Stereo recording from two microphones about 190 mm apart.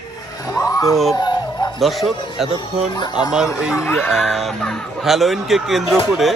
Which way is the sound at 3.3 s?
5° right (ahead or behind).